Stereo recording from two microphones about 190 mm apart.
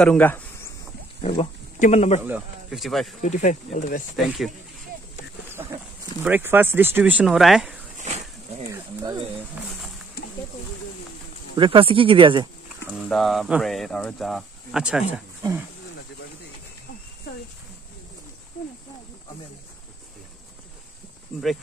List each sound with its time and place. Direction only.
0.0 s speech: 5° left (ahead or behind)
1.2 s speech: 30° left (ahead or behind)
2.2 s speech: 5° right (ahead or behind)
3.2 s speech: 40° left (ahead or behind)
5.5 s goat: 10° right (ahead or behind)
6.2 s speech: 10° right (ahead or behind)
8.0 s a sound: 35° right (ahead or behind)
8.6 s a sound: 15° right (ahead or behind)
9.6 s wild animals: 5° right (ahead or behind)
11.5 s speech: 25° right (ahead or behind)
12.9 s speech: centre (ahead or behind)